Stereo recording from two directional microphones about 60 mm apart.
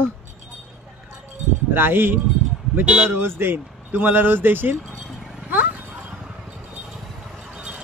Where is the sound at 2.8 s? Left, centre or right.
Right.